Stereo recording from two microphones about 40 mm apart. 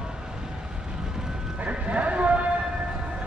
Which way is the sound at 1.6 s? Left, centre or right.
Right.